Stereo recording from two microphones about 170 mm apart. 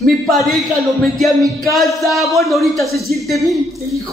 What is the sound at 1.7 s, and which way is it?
Speech, centre (ahead or behind).